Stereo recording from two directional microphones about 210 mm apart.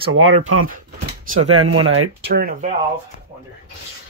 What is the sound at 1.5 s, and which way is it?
Speech, 90° right.